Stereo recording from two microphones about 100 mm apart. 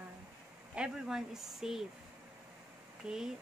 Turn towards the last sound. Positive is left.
turn(degrees=-5)  # may be behind; listen again after turning